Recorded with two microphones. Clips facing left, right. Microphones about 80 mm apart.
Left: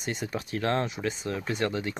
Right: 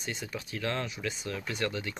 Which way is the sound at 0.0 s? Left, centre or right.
Left.